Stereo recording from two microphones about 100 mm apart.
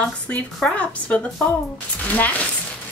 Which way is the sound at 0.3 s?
10° left (ahead or behind).